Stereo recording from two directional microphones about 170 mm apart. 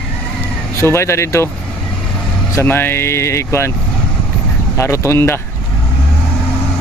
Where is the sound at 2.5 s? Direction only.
15° left (ahead or behind).